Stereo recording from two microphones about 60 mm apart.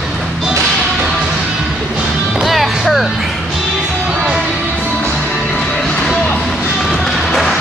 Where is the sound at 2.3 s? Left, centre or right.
Centre.